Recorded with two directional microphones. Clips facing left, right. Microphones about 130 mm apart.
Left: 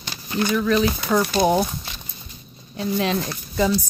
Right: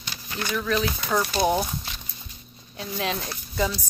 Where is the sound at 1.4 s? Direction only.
20° left (ahead or behind).